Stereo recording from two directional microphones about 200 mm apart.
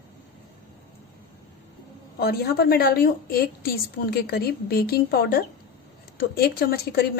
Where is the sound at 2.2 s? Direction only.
50° left (ahead or behind).